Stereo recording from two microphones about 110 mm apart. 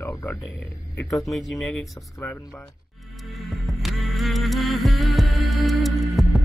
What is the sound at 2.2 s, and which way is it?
Speech, 15° left (ahead or behind).